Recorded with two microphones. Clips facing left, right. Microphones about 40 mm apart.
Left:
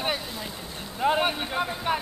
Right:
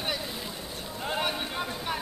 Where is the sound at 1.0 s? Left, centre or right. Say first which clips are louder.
Left 7 dB; left.